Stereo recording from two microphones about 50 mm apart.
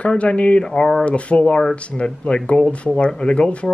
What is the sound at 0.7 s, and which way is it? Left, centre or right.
A man's voice, centre.